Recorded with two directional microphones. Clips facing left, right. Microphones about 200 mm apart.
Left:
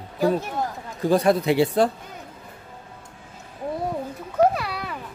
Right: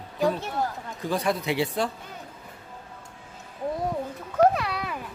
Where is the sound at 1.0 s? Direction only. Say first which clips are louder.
Left 8 dB; 35° left (ahead or behind).